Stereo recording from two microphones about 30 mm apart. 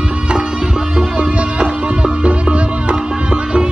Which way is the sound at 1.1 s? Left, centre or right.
Right.